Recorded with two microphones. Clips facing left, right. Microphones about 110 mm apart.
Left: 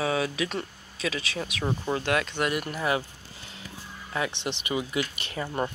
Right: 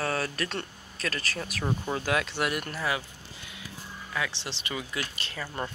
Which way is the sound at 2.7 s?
20° left (ahead or behind).